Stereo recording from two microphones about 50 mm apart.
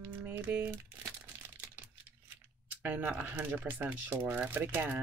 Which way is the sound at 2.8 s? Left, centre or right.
Right.